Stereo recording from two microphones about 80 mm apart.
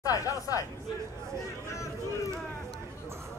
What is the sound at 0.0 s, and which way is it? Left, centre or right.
Speech, left.